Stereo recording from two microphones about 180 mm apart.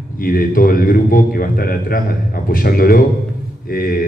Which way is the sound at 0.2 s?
55° left (ahead or behind).